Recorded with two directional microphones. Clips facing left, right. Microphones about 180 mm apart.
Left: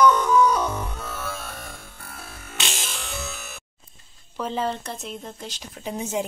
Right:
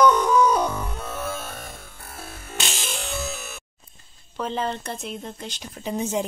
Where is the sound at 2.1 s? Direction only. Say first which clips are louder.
Right 4 dB; 25° right (ahead or behind).